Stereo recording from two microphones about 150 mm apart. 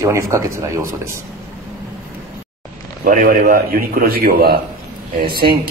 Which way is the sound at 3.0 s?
65° right (ahead or behind).